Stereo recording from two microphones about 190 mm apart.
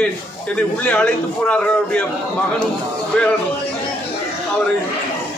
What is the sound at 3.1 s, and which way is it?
Speech, 5° left (ahead or behind).